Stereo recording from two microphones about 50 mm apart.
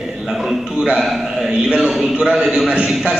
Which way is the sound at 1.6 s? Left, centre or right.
Centre.